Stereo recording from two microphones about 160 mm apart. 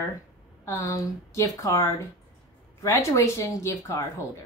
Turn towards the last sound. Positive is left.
turn(degrees=20)  # may be behind; listen again after turning